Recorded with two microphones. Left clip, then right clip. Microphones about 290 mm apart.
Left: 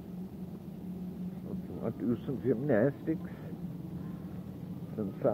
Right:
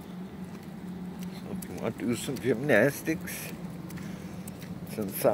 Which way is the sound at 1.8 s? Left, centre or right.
Right.